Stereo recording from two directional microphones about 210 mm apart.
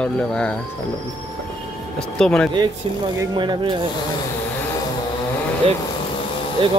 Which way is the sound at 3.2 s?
20° right (ahead or behind).